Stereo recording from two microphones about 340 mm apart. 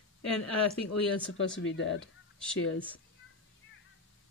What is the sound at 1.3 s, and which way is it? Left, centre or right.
Speech, left.